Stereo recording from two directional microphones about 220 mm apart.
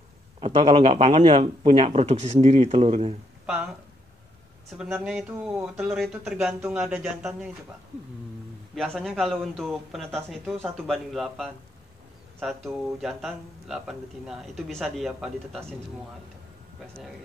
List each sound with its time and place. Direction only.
0.4 s speech: 25° right (ahead or behind)
3.4 s speech: 5° right (ahead or behind)
4.7 s speech: centre (ahead or behind)
8.7 s speech: centre (ahead or behind)